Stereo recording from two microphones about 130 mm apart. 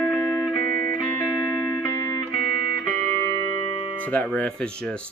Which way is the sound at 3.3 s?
40° left (ahead or behind).